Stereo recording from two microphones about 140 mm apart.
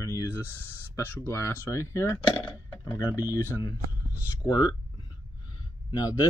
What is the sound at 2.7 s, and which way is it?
Speech, 30° left (ahead or behind).